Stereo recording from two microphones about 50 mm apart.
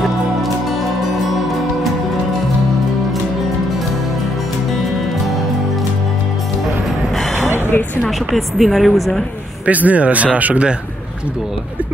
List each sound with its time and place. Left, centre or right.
7.3 s a sound: right
8.3 s speech: centre
9.7 s speech: right